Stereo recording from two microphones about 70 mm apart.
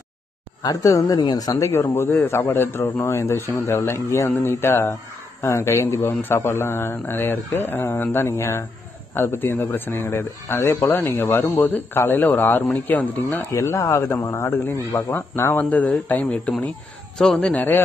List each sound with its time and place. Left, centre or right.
0.6 s speech: left
1.6 s a man's voice: left
13.5 s speech: left
15.0 s a man's voice: left
15.5 s speech: left
17.2 s a man's voice: centre
17.6 s speech: left